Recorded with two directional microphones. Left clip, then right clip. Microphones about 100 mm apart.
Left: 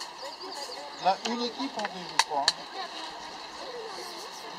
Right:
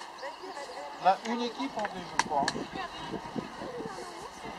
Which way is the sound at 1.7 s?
35° left (ahead or behind).